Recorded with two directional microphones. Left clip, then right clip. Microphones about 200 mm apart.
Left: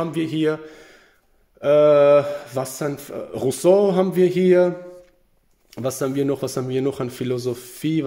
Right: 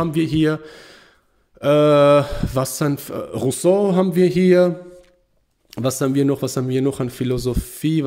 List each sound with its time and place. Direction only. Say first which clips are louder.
0.0 s speech: right 3 dB; 20° right (ahead or behind)
3.4 s speech: left 1 dB; 10° right (ahead or behind)